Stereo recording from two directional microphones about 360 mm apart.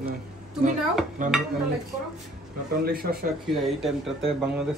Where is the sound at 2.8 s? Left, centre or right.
Right.